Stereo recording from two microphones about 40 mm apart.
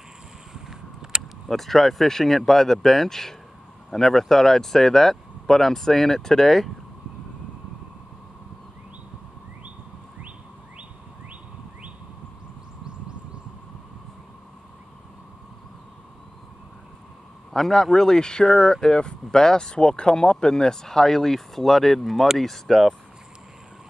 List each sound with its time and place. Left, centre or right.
0.5 s vehicle: centre
1.5 s speech: centre
17.5 s a man's voice: centre